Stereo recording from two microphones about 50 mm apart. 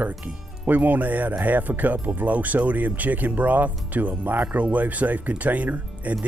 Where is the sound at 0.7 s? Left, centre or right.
Right.